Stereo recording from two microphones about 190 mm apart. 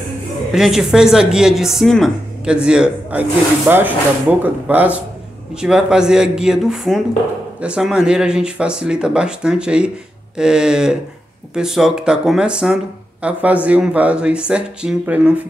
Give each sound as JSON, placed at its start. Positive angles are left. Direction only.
{"t": 0.5, "sound": "speech", "side_deg": 0}